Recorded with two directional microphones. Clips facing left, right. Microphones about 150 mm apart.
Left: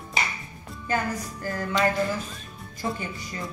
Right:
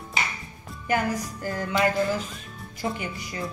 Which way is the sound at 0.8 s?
15° right (ahead or behind).